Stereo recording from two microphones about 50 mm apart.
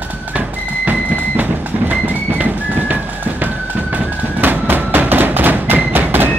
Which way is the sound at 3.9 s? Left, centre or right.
Right.